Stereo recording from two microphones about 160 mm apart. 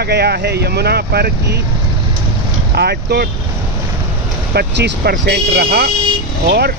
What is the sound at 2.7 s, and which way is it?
Speech, 90° right.